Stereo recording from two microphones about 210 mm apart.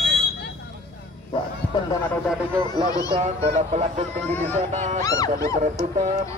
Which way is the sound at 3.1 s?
30° right (ahead or behind).